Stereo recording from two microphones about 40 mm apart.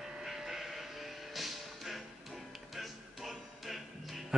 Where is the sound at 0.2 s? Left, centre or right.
Centre.